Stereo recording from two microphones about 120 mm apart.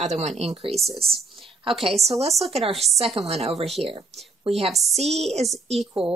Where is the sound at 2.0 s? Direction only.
60° right (ahead or behind).